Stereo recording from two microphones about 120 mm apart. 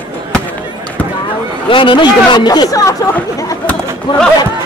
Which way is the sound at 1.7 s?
45° left (ahead or behind).